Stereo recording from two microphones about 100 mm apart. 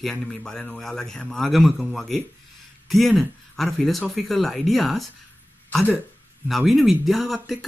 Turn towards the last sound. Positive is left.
turn(degrees=0)  # may be behind; listen again after turning